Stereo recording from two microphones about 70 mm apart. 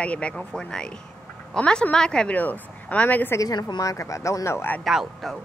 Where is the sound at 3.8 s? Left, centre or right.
Left.